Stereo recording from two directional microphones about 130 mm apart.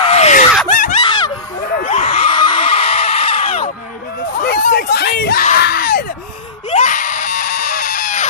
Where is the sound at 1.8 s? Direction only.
50° left (ahead or behind).